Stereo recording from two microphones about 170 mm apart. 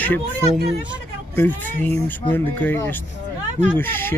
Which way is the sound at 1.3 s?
10° left (ahead or behind).